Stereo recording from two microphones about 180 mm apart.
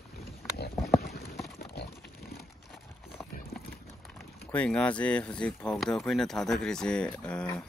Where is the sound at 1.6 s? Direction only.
65° left (ahead or behind).